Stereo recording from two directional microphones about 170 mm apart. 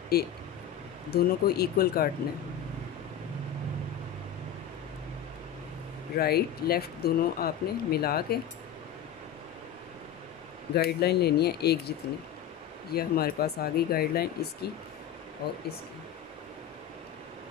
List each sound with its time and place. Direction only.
0.1 s speech: 65° left (ahead or behind)
6.1 s speech: 65° left (ahead or behind)
10.7 s speech: 70° left (ahead or behind)
12.9 s speech: 65° left (ahead or behind)